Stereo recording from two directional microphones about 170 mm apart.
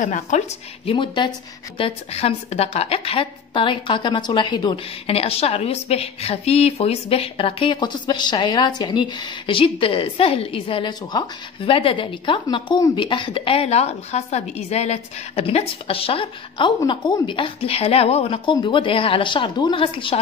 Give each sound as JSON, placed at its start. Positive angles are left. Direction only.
{"t": 0.0, "sound": "a woman's voice", "side_deg": 45}
{"t": 0.8, "sound": "a woman's voice", "side_deg": 30}